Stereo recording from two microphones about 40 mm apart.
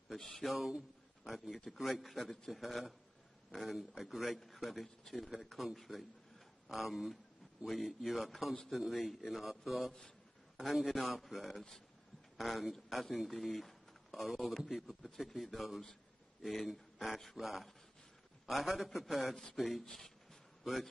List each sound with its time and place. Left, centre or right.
0.4 s speech: centre
5.9 s a man's voice: centre
6.7 s a man's voice: centre
15.1 s speech: centre
19.8 s speech: centre